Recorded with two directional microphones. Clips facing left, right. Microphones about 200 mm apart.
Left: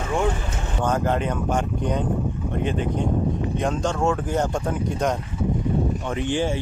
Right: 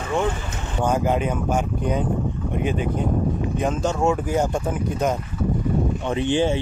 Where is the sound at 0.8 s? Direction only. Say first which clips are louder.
Right 2 dB; 10° right (ahead or behind).